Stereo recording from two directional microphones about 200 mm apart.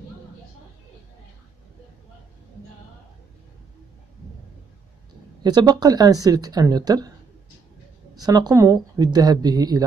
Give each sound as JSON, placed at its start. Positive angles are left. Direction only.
{"t": 5.4, "sound": "speech", "side_deg": -20}
{"t": 8.2, "sound": "speech", "side_deg": -20}